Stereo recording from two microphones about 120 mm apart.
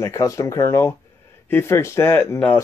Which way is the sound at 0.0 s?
25° left (ahead or behind).